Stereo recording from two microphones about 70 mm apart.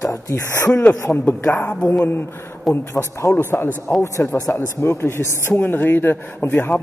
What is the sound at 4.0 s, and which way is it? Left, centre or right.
Speech, left.